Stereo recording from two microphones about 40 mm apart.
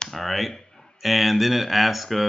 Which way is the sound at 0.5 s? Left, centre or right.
Centre.